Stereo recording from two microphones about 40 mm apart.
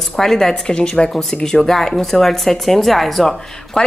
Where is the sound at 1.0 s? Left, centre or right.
Left.